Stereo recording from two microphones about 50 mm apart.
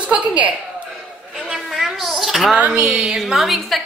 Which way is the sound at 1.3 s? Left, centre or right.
Centre.